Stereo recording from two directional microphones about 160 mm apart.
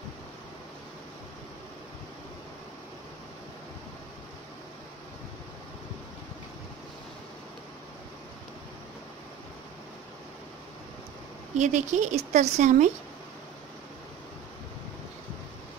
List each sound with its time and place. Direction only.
11.5 s a woman's voice: 45° right (ahead or behind)